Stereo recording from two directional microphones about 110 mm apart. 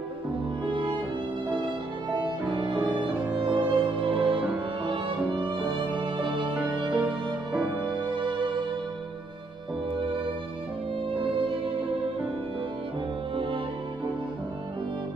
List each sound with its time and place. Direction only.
0.7 s music: 50° right (ahead or behind)
2.5 s music: 45° right (ahead or behind)
3.4 s music: 15° right (ahead or behind)
4.1 s music: 50° right (ahead or behind)
4.8 s violin: 50° right (ahead or behind)
5.9 s music: 50° right (ahead or behind)
6.9 s music: 15° right (ahead or behind)
7.6 s music: 45° right (ahead or behind)
11.1 s music: 55° right (ahead or behind)